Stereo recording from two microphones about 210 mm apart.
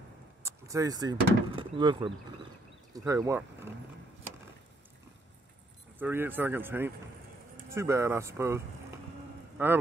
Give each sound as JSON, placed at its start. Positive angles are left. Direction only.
{"t": 0.4, "sound": "speech", "side_deg": -15}
{"t": 5.9, "sound": "speech", "side_deg": -10}